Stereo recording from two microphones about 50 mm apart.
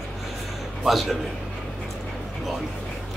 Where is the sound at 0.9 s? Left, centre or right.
Centre.